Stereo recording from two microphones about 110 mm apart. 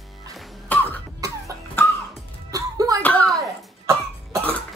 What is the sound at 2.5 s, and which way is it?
Music, 30° right (ahead or behind).